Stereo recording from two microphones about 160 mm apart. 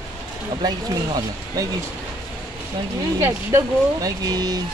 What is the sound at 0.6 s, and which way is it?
Speech, 25° right (ahead or behind).